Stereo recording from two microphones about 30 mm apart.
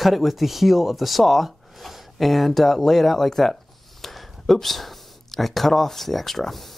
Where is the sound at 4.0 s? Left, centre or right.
Centre.